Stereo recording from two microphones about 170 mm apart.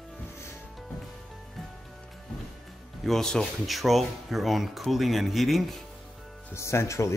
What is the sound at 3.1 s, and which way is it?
Speech, centre (ahead or behind).